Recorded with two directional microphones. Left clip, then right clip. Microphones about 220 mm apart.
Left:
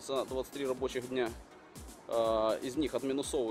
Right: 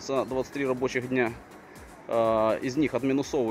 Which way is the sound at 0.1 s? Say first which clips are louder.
Right 7 dB; 15° left (ahead or behind).